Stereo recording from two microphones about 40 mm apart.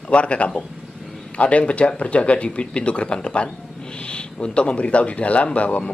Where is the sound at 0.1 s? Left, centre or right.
Left.